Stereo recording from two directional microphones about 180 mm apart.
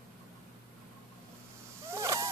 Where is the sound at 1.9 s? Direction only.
15° right (ahead or behind).